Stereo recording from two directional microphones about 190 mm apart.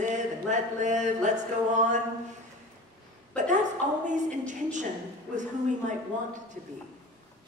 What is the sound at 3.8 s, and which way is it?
A woman's voice, 40° right (ahead or behind).